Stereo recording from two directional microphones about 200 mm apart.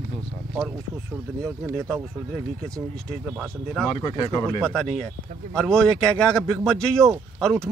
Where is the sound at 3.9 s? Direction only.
20° left (ahead or behind).